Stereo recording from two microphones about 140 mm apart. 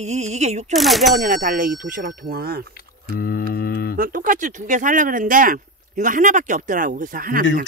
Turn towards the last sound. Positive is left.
turn(degrees=-85)